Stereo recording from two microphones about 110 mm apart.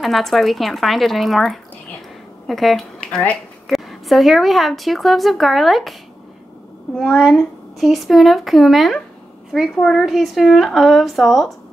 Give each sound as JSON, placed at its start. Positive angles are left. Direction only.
{"t": 0.0, "sound": "a woman's voice", "side_deg": 0}
{"t": 7.0, "sound": "a woman's voice", "side_deg": 0}